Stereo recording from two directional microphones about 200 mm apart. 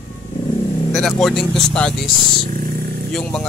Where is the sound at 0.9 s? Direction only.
Centre (ahead or behind).